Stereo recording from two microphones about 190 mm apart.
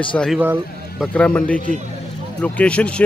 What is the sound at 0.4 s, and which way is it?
Speech, 10° right (ahead or behind).